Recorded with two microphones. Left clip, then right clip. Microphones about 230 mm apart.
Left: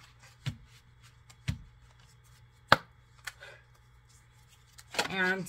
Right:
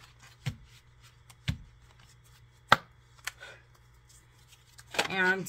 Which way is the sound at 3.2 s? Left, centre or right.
Centre.